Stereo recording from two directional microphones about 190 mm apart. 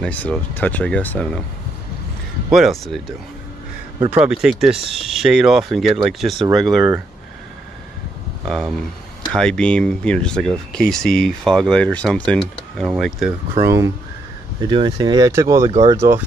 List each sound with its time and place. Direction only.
0.0 s speech: 5° left (ahead or behind)
2.5 s speech: centre (ahead or behind)
8.5 s speech: centre (ahead or behind)
13.6 s speech: 15° right (ahead or behind)